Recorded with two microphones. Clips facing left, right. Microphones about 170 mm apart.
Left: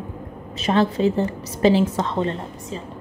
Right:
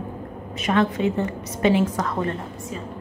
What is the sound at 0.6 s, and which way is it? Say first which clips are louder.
A woman's voice: left 2 dB; 30° left (ahead or behind).